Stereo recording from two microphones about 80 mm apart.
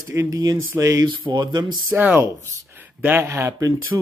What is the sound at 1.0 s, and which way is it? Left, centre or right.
Speech, right.